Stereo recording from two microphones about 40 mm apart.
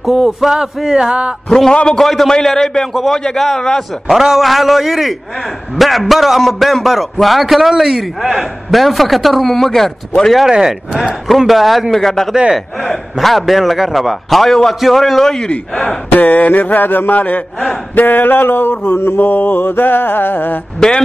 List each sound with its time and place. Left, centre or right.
0.0 s a man's voice: centre
1.7 s speech: left
2.0 s a man's voice: centre
4.1 s a man's voice: centre
10.5 s speech: centre
11.2 s a man's voice: centre
15.3 s speech: left
16.1 s a man's voice: left
17.9 s mantra: left